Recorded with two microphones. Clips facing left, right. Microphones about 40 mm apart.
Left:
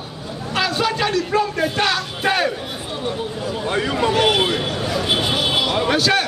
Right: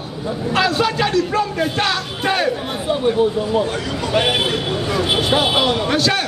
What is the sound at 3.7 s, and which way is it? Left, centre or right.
Speech, left.